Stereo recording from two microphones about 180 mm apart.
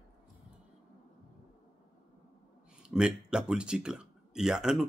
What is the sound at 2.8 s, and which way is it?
Speech, 5° right (ahead or behind).